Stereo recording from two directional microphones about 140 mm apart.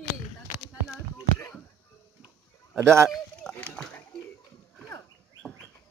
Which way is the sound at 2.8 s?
20° right (ahead or behind).